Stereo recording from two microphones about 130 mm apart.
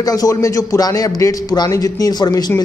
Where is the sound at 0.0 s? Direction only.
30° left (ahead or behind).